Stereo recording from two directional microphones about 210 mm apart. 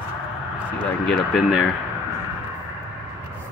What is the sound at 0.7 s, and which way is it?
Speech, 5° left (ahead or behind).